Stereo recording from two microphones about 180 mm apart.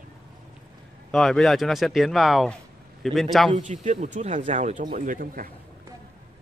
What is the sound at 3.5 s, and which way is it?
Speech, 40° right (ahead or behind).